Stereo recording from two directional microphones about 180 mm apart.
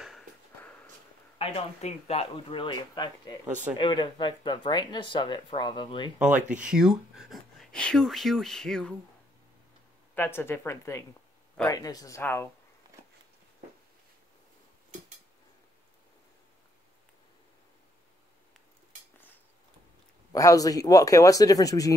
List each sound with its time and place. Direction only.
1.4 s speech: 35° left (ahead or behind)
6.6 s speech: 5° right (ahead or behind)
10.1 s speech: 10° left (ahead or behind)
20.3 s speech: 20° left (ahead or behind)